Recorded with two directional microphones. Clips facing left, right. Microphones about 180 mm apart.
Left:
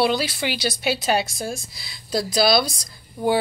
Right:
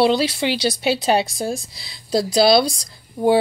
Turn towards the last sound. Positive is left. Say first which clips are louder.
# right 5 dB
turn(degrees=-30)  # may be behind; listen again after turning